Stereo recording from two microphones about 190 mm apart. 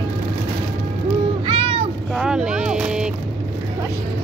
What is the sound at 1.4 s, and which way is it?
Cat, 30° right (ahead or behind).